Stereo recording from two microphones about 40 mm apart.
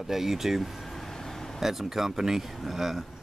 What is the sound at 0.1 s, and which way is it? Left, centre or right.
Speech, centre.